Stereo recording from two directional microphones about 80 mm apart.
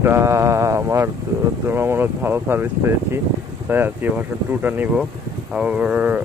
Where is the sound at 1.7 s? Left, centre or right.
Right.